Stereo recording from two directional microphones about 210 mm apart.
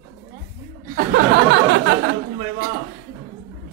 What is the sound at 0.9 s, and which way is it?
Chuckle, 55° right (ahead or behind).